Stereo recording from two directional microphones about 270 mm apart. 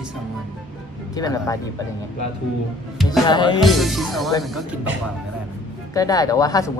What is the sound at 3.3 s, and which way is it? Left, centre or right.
Speech, centre.